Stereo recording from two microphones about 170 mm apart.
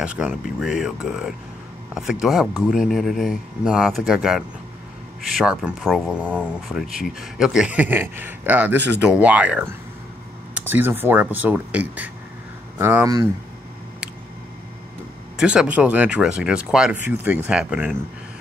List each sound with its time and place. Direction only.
0.0 s speech: 5° right (ahead or behind)
10.7 s speech: 10° right (ahead or behind)
15.3 s speech: 5° right (ahead or behind)